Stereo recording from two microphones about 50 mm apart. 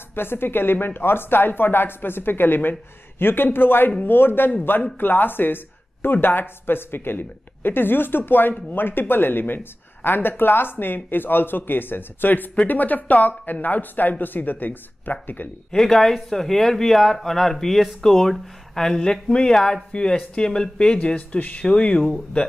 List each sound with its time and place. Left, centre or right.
0.1 s a woman's voice: left
15.7 s speech: centre
21.0 s speech: left